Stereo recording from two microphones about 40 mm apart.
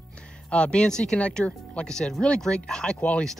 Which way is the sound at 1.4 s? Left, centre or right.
Left.